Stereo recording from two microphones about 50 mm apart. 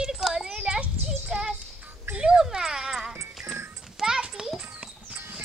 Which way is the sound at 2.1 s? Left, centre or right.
Centre.